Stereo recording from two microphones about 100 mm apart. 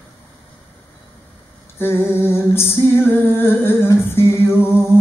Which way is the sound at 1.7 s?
25° left (ahead or behind).